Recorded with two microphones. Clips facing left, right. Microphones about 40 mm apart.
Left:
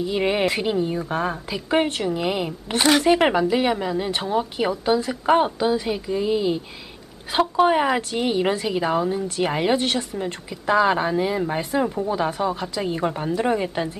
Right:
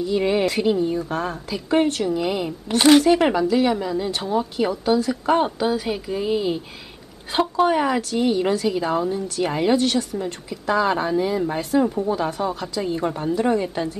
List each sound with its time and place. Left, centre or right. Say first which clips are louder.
0.0 s speech: right 1 dB; left
5.4 s speech: left 1 dB; centre
7.3 s speech: left 1 dB; centre